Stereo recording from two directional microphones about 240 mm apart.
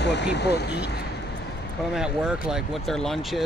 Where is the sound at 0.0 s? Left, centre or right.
Left.